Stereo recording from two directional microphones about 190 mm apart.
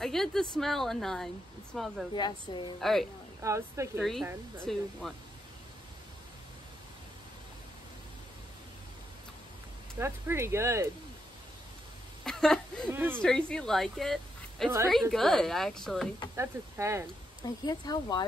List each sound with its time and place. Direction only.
0.0 s a woman's voice: centre (ahead or behind)
2.1 s speech: 25° left (ahead or behind)
2.8 s a woman's voice: centre (ahead or behind)
3.4 s speech: 15° right (ahead or behind)
4.0 s a woman's voice: centre (ahead or behind)
9.9 s speech: 10° right (ahead or behind)
12.3 s speech: centre (ahead or behind)
12.9 s speech: 10° right (ahead or behind)
13.2 s a woman's voice: 5° left (ahead or behind)
16.3 s speech: 15° right (ahead or behind)
17.4 s speech: 20° left (ahead or behind)